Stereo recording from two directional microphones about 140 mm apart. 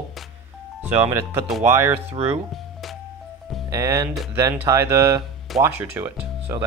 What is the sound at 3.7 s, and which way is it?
Speech, 25° right (ahead or behind).